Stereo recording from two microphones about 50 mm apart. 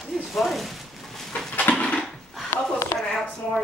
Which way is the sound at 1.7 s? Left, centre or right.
Left.